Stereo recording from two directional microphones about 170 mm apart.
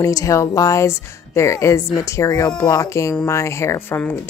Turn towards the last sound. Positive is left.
turn(degrees=15)  # may be behind; listen again after turning